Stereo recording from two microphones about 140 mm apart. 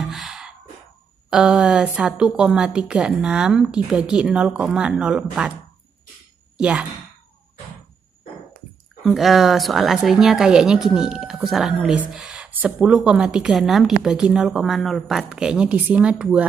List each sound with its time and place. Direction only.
0.0 s gasp: centre (ahead or behind)
1.3 s a woman's voice: 5° right (ahead or behind)
6.6 s speech: 10° right (ahead or behind)
9.0 s a woman's voice: centre (ahead or behind)